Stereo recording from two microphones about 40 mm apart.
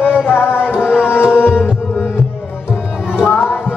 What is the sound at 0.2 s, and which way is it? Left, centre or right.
Music, left.